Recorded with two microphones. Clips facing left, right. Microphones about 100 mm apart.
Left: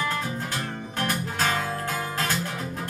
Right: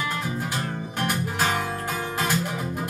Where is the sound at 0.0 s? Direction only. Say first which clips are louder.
Even; 10° right (ahead or behind).